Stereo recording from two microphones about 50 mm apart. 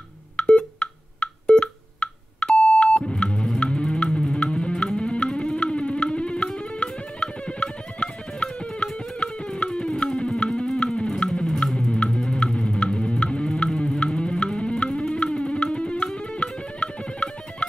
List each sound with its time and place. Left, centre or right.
0.4 s telephone dialing: centre
9.2 s music: left